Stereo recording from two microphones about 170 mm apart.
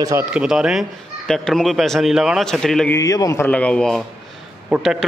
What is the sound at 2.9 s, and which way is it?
Speech, 20° left (ahead or behind).